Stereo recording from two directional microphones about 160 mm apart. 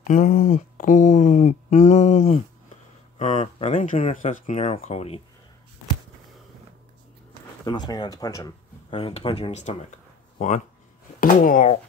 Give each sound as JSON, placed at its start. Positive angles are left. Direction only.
{"t": 0.0, "sound": "speech", "side_deg": 55}
{"t": 7.6, "sound": "speech", "side_deg": 25}
{"t": 8.9, "sound": "speech", "side_deg": 35}
{"t": 11.1, "sound": "speech", "side_deg": 60}